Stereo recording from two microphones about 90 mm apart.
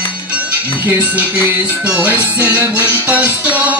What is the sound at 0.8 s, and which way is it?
Music, 15° right (ahead or behind).